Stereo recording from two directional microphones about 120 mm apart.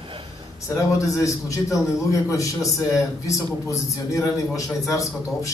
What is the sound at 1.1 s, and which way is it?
A man's voice, 25° left (ahead or behind).